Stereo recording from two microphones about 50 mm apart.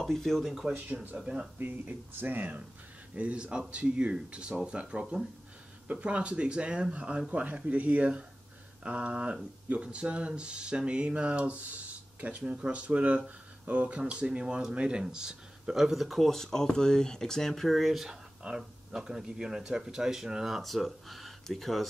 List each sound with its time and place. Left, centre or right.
0.0 s speech: centre
1.1 s speech: centre
1.6 s speech: right
3.2 s speech: right; by 18.0 s centre
18.4 s speech: centre